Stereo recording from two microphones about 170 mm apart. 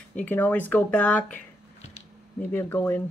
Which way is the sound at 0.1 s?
10° left (ahead or behind).